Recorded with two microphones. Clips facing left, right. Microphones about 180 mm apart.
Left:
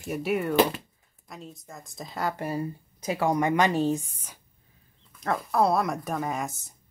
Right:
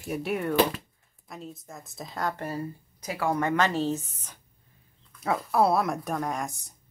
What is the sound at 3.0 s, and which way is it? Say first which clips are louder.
A woman's voice: left 3 dB; 20° left (ahead or behind).